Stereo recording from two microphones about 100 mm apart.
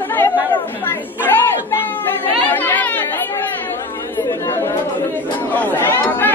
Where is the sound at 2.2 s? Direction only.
20° left (ahead or behind).